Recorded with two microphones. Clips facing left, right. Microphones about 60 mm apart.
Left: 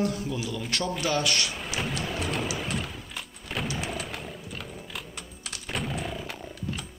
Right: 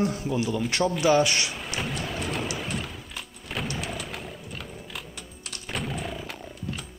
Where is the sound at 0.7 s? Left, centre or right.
Centre.